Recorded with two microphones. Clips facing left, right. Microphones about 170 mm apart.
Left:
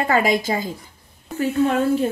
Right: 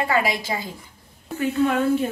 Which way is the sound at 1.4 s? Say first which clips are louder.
Left 2 dB; 35° left (ahead or behind).